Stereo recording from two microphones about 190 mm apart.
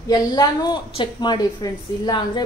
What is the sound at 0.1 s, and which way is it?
A woman's voice, 20° left (ahead or behind).